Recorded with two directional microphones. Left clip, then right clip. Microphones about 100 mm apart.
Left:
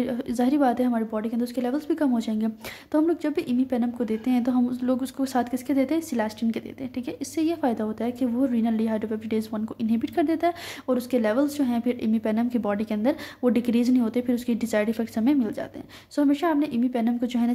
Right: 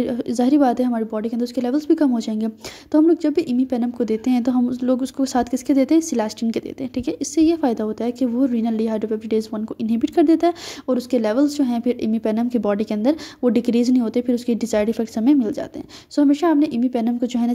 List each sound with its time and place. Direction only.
0.0 s speech: 40° right (ahead or behind)
2.9 s speech: 35° right (ahead or behind); by 10.5 s 50° right (ahead or behind)
10.9 s a woman's voice: 40° right (ahead or behind)